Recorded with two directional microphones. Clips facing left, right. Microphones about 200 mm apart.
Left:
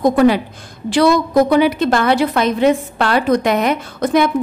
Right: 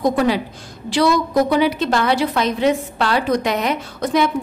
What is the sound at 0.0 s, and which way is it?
A woman's voice, 55° left (ahead or behind).